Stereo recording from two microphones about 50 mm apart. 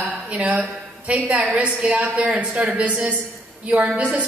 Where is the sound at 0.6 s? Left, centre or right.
Right.